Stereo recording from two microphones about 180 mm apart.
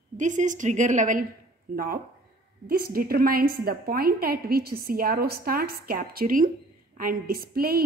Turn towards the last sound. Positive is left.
turn(degrees=-55)  # may be behind; listen again after turning